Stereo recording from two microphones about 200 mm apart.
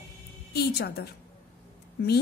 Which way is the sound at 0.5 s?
50° left (ahead or behind).